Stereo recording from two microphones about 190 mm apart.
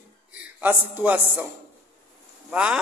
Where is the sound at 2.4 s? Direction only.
5° right (ahead or behind).